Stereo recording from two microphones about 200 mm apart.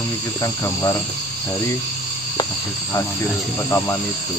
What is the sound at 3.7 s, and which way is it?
Speech, 15° left (ahead or behind).